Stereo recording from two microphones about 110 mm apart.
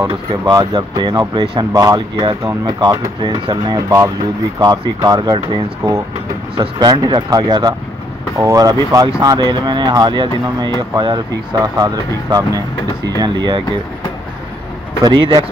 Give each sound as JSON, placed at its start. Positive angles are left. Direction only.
{"t": 0.1, "sound": "speech", "side_deg": -35}
{"t": 15.0, "sound": "speech", "side_deg": -45}